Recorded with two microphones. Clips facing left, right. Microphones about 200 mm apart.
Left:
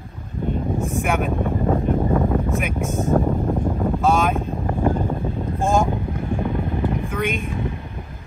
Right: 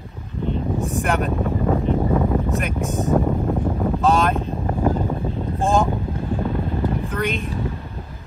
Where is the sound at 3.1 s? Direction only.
Centre (ahead or behind).